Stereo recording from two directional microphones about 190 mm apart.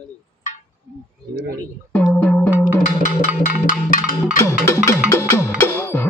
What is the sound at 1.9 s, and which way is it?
Music, 10° left (ahead or behind).